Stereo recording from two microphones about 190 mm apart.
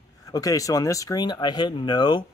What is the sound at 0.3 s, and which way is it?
Speech, 20° left (ahead or behind).